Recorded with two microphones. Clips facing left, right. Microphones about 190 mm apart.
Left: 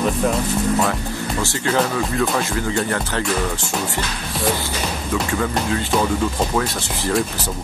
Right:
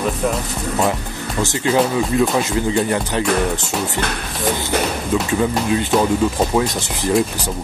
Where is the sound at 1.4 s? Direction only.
15° right (ahead or behind).